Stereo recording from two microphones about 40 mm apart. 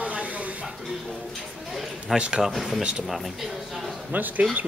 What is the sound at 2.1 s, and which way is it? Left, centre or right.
Speech, right.